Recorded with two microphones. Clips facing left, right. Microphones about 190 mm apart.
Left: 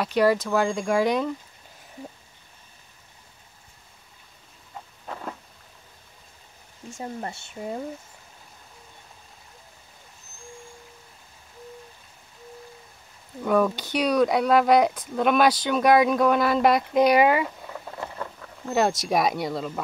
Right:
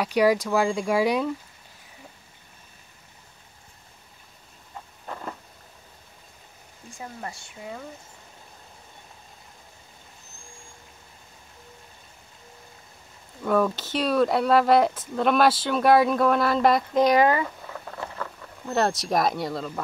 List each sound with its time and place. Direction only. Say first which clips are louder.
0.0 s speech: even; 10° right (ahead or behind)
5.0 s a sound: even; centre (ahead or behind)
7.0 s speech: left 4 dB; 30° left (ahead or behind)
13.4 s speech: left 1 dB; centre (ahead or behind)
17.9 s a sound: even; 20° left (ahead or behind)
18.4 s speech: left 1 dB; centre (ahead or behind)